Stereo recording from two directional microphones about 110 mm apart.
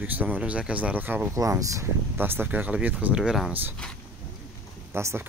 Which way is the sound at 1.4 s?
30° right (ahead or behind).